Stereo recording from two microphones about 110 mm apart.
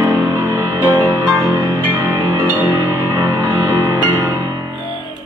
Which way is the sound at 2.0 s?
20° right (ahead or behind).